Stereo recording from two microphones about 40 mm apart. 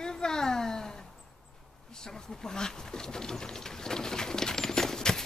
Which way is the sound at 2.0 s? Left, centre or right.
Centre.